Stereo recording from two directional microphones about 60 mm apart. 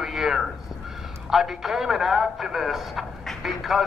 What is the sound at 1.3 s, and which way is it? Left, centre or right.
A man's voice, centre.